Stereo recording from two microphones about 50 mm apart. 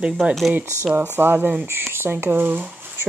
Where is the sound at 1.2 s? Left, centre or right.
Right.